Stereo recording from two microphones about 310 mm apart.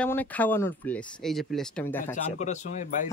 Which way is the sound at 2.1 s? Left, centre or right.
Left.